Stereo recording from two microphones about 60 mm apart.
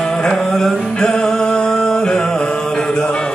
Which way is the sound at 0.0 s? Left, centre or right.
Centre.